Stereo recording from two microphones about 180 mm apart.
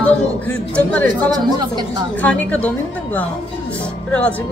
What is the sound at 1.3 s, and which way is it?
Speech, 25° right (ahead or behind).